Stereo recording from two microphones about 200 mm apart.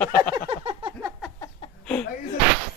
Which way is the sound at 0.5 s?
25° right (ahead or behind).